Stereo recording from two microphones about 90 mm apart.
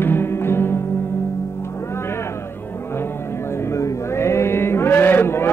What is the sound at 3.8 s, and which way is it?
Chant, 35° left (ahead or behind).